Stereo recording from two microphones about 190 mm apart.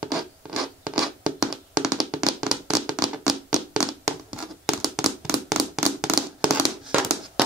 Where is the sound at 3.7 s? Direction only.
Centre (ahead or behind).